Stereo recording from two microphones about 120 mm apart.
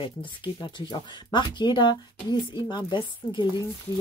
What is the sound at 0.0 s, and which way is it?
Speech, 45° left (ahead or behind).